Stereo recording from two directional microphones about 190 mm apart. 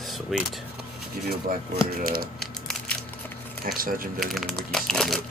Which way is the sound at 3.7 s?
45° right (ahead or behind).